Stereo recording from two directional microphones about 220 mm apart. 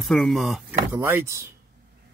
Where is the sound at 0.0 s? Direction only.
Centre (ahead or behind).